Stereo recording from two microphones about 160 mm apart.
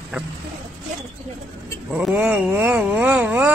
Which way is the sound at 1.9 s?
10° right (ahead or behind).